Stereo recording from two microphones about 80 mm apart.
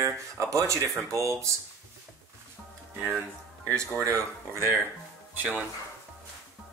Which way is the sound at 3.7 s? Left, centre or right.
Right.